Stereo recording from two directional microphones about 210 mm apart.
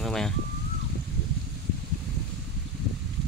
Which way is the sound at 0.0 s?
Centre (ahead or behind).